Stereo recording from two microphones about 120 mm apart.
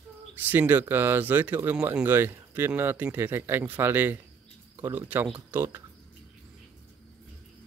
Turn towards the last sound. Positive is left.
turn(degrees=-20)  # may be behind; listen again after turning